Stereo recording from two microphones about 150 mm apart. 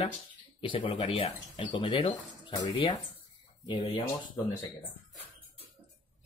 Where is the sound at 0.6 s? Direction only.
35° left (ahead or behind).